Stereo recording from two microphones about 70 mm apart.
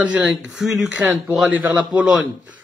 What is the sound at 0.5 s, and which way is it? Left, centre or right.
Speech, centre.